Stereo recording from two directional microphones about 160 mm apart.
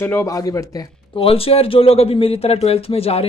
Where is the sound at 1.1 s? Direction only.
35° left (ahead or behind).